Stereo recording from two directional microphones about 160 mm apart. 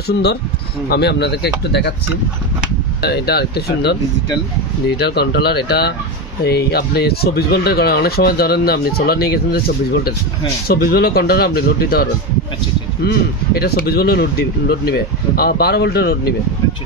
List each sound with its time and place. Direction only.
0.8 s speech: 90° left
3.0 s speech: 90° left
10.7 s speech: 75° left (ahead or behind)